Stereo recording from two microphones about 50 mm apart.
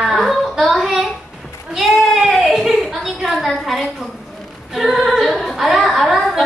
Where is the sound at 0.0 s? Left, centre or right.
Centre.